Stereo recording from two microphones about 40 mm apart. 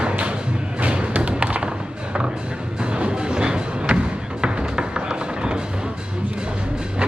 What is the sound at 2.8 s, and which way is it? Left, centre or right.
Music, right.